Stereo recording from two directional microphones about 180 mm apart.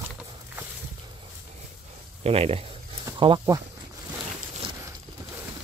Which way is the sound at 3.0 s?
25° right (ahead or behind).